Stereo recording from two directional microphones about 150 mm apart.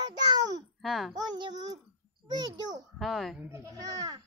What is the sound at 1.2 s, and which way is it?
A child's voice, 25° right (ahead or behind).